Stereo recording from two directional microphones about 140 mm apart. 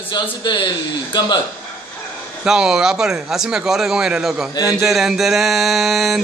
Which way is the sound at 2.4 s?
5° right (ahead or behind).